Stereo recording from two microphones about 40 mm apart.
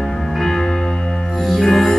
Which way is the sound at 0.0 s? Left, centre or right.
Centre.